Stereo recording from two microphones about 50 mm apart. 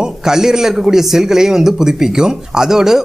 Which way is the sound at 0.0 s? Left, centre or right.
Centre.